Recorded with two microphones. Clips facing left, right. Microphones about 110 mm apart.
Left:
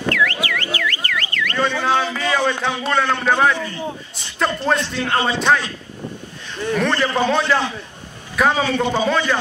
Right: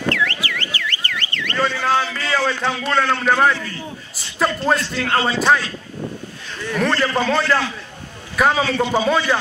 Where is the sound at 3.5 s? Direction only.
25° left (ahead or behind).